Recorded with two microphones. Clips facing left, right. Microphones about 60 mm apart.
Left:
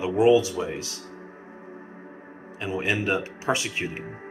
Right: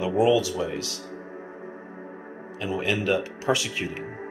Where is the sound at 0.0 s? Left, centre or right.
Left.